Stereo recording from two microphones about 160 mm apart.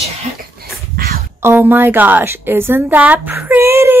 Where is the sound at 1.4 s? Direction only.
15° right (ahead or behind).